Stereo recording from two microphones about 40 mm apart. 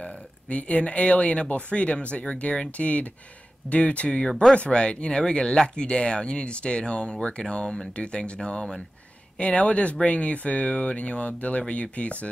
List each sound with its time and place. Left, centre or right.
0.5 s speech: left
4.3 s speech: centre
4.6 s speech: left
9.4 s speech: left